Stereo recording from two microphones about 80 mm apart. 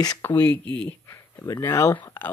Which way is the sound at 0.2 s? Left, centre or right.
Left.